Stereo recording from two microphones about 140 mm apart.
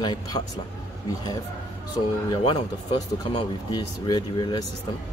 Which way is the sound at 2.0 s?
40° left (ahead or behind).